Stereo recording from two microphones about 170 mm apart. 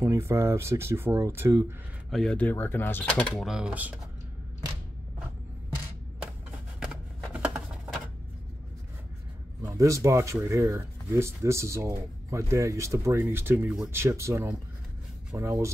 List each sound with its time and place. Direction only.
0.0 s speech: 15° right (ahead or behind)
2.0 s speech: 5° left (ahead or behind)
6.8 s shuffling cards: 5° right (ahead or behind)
9.6 s speech: 15° right (ahead or behind)